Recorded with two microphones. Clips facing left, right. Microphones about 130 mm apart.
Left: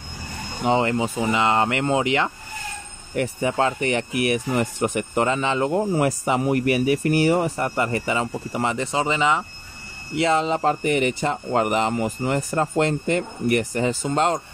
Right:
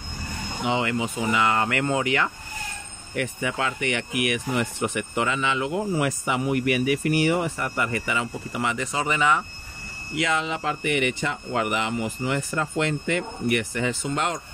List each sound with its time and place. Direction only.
0.7 s speech: 35° left (ahead or behind)